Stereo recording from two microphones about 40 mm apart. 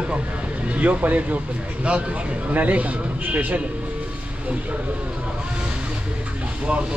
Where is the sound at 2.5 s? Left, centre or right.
Right.